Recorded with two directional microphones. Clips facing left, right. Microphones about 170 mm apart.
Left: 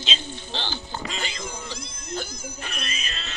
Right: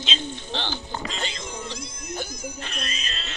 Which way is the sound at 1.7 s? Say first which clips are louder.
Even; 20° right (ahead or behind).